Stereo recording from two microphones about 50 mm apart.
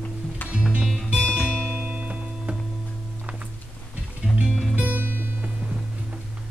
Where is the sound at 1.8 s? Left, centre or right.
Right.